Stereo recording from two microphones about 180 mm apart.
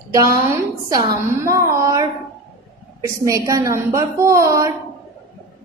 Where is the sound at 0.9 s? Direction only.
20° right (ahead or behind).